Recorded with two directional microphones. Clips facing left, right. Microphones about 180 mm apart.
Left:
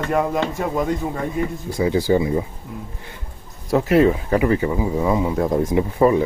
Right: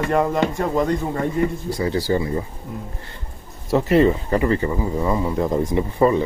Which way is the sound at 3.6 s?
Centre (ahead or behind).